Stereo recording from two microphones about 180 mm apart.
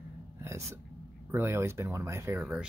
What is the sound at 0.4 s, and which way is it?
Hiccup, 15° right (ahead or behind).